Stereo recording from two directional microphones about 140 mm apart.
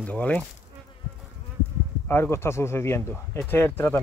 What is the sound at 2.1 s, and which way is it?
Speech, 15° left (ahead or behind).